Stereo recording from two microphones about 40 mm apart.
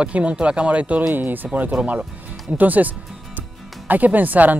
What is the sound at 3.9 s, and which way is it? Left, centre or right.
Speech, right.